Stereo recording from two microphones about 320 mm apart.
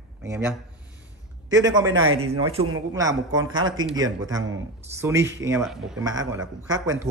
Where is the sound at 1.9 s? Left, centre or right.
Right.